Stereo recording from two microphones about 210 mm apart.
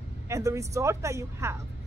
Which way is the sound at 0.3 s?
15° right (ahead or behind).